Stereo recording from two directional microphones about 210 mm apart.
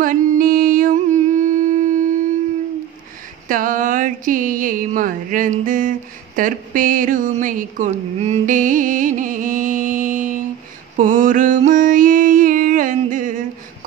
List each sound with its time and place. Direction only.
0.0 s mantra: 40° right (ahead or behind)
3.4 s a sound: 40° right (ahead or behind)
11.0 s mantra: 40° right (ahead or behind)